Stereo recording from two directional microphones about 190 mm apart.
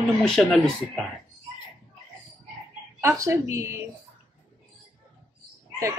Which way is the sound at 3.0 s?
15° right (ahead or behind).